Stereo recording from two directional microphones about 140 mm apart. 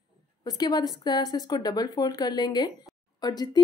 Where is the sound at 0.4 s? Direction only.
30° left (ahead or behind).